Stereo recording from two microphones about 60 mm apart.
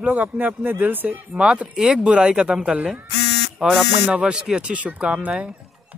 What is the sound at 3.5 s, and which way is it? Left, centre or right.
Speech, centre.